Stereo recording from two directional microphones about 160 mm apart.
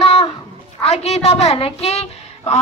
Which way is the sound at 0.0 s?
40° left (ahead or behind).